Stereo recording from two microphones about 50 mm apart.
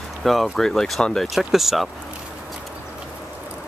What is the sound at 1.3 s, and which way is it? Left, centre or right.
Speech, centre.